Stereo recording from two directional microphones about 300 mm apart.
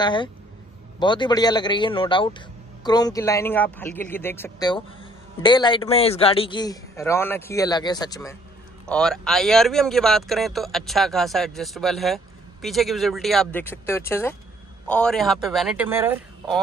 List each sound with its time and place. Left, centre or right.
0.0 s speech: centre